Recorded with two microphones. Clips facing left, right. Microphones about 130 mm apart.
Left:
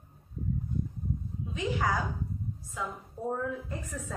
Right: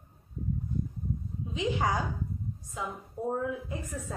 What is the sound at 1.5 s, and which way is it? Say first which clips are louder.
Speech: right 1 dB; 25° right (ahead or behind).